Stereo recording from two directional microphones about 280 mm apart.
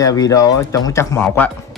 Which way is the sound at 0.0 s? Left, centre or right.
Centre.